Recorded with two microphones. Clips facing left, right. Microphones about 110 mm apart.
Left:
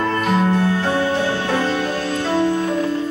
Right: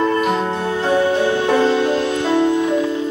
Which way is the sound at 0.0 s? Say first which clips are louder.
Right 1 dB; 20° right (ahead or behind).